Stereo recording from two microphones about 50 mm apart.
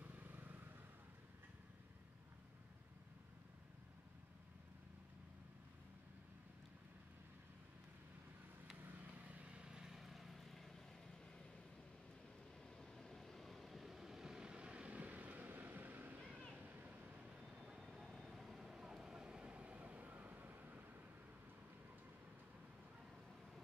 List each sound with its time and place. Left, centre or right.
0.0 s vehicle: right
8.8 s vehicle: right; by 10.7 s centre
12.9 s vehicle: centre; by 17.2 s right
17.6 s vehicle: centre; by 20.8 s right